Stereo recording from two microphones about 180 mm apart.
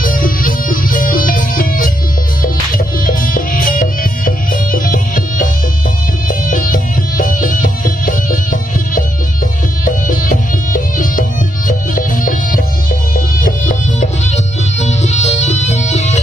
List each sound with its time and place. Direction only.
0.0 s music: 50° left (ahead or behind)
3.1 s music: 50° left (ahead or behind)